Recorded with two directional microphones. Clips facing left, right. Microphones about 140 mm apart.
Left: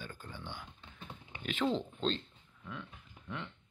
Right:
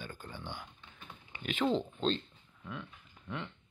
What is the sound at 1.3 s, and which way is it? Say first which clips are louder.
Speech: right 2 dB; 5° right (ahead or behind).